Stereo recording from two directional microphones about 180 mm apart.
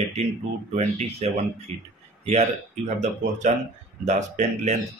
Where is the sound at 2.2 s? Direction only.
40° right (ahead or behind).